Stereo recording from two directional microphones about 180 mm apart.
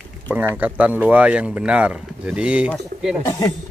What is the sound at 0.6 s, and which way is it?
Speech, 10° right (ahead or behind).